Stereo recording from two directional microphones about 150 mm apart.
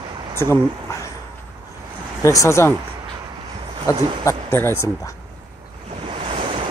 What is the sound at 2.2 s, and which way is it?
Speech, 20° left (ahead or behind).